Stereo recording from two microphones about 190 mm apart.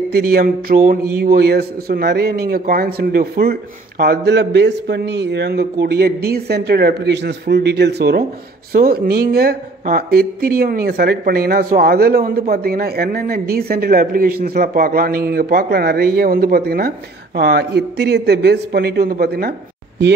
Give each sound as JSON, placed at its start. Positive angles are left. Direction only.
{"t": 0.1, "sound": "a woman's voice", "side_deg": -50}